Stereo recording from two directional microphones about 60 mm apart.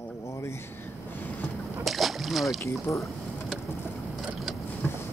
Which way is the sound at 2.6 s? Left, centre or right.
Left.